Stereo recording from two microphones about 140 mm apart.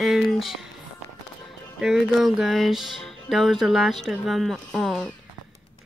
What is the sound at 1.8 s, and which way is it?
Speech, 5° right (ahead or behind).